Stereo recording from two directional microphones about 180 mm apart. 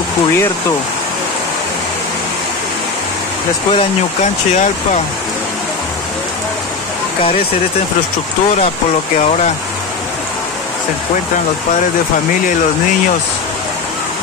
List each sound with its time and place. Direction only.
3.7 s speech: 40° left (ahead or behind)